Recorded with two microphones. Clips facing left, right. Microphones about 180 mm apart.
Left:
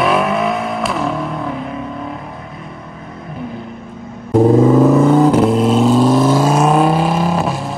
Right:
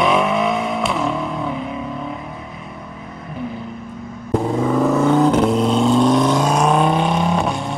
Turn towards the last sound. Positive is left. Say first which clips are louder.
# left 2 dB
turn(degrees=5)  # may be behind; listen again after turning